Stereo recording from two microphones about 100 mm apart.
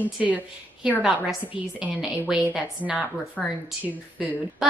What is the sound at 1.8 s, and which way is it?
Speech, 15° right (ahead or behind).